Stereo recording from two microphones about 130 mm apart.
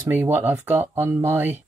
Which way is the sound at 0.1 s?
15° right (ahead or behind).